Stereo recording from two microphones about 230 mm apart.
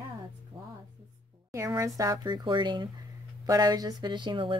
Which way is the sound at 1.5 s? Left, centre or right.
Centre.